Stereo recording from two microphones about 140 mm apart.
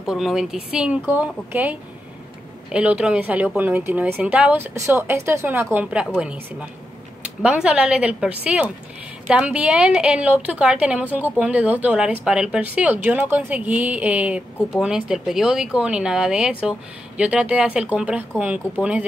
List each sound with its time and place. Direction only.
0.0 s a woman's voice: centre (ahead or behind)
4.7 s a woman's voice: 20° right (ahead or behind)